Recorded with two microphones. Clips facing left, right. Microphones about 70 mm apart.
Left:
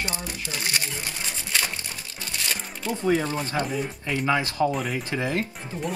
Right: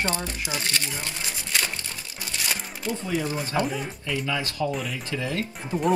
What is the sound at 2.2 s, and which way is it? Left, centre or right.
Music, centre.